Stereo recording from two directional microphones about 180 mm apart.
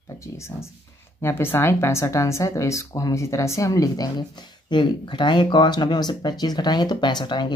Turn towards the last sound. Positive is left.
turn(degrees=25)  # may be behind; listen again after turning